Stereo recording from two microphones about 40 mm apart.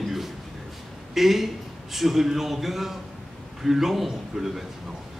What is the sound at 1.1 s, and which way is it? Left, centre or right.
A man's voice, centre.